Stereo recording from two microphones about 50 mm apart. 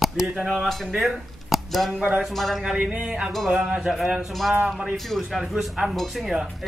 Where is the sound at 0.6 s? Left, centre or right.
Centre.